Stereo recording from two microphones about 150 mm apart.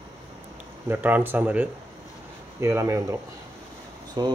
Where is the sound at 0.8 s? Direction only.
10° right (ahead or behind).